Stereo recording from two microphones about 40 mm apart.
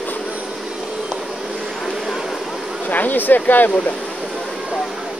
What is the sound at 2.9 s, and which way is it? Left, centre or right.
Speech, left.